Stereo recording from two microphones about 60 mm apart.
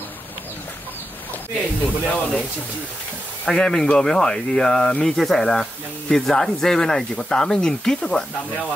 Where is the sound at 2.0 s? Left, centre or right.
Centre.